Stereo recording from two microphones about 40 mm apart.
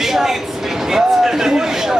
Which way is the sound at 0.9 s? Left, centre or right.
Centre.